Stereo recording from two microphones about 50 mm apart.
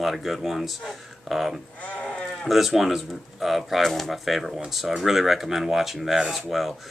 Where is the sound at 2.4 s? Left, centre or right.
Centre.